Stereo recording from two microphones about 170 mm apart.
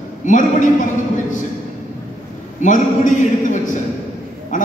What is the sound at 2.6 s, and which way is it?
A man's voice, 50° left (ahead or behind).